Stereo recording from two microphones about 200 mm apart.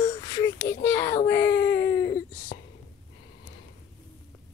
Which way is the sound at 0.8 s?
10° left (ahead or behind).